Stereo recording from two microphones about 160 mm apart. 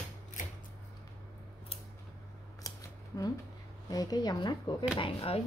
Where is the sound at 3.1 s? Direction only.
20° left (ahead or behind).